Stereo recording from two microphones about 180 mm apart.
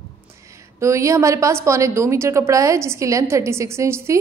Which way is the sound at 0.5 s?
15° right (ahead or behind).